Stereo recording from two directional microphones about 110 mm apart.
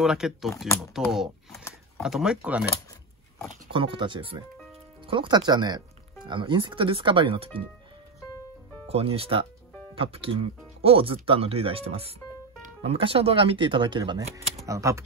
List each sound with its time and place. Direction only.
0.0 s speech: 5° right (ahead or behind)
3.7 s speech: 50° right (ahead or behind)
8.8 s speech: 65° right (ahead or behind); by 14.2 s 45° right (ahead or behind)
14.7 s speech: 30° right (ahead or behind)